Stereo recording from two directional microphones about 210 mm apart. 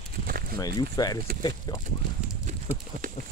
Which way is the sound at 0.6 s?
15° left (ahead or behind).